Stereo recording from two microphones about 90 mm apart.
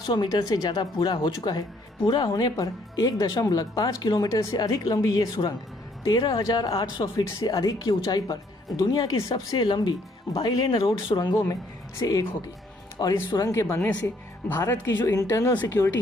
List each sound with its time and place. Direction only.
0.0 s speech: 55° left (ahead or behind)
4.3 s speech: 35° left (ahead or behind)
6.7 s speech: 75° left (ahead or behind)
7.4 s speech: 45° left (ahead or behind)
10.8 s speech: 80° left
12.0 s speech: 40° left (ahead or behind)
13.4 s speech: 30° left (ahead or behind)
15.0 s speech: 40° left (ahead or behind)
15.8 s speech: 15° left (ahead or behind)